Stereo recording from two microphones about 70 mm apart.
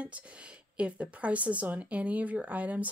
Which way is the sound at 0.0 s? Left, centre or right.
Centre.